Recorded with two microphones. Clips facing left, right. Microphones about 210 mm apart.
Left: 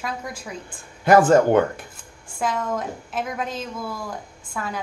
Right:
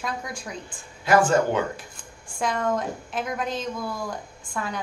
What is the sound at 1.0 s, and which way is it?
Speech, 55° left (ahead or behind).